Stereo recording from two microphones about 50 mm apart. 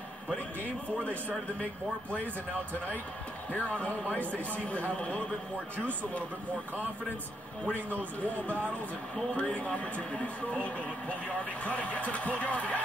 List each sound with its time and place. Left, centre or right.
1.6 s speech: left
3.5 s speech: left
7.6 s speech: left
9.4 s speech: left